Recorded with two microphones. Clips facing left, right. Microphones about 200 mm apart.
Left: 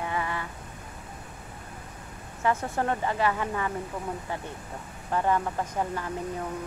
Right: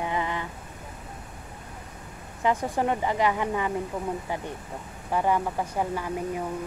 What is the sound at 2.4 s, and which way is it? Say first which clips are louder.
Speech: right 2 dB; 15° right (ahead or behind).